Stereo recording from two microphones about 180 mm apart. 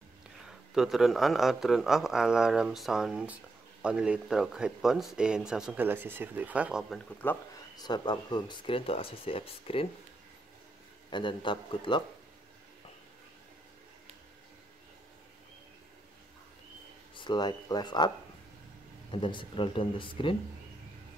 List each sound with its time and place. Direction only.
0.5 s speech: centre (ahead or behind)
7.2 s speech: 10° left (ahead or behind)
7.7 s speech: 25° left (ahead or behind)
11.1 s speech: 25° left (ahead or behind)
17.1 s speech: 25° left (ahead or behind)
19.1 s speech: 30° left (ahead or behind)